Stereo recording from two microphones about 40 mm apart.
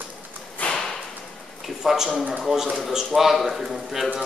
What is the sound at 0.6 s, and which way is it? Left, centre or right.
Whip, left.